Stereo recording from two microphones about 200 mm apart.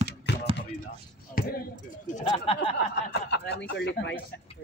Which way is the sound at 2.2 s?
30° left (ahead or behind).